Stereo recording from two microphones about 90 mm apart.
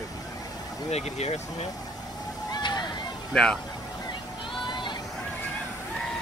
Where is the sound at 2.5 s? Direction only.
55° left (ahead or behind).